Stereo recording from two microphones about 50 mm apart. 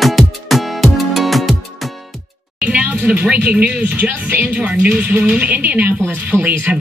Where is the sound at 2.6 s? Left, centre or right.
Right.